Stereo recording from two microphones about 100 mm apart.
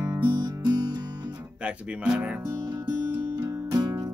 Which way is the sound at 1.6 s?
10° right (ahead or behind).